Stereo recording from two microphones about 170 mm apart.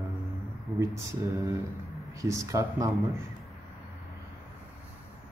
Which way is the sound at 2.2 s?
20° right (ahead or behind).